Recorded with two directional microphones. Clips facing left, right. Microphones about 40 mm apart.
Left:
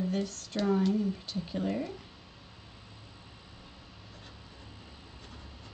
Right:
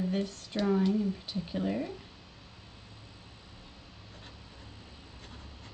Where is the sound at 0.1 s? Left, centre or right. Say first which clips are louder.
Even; centre.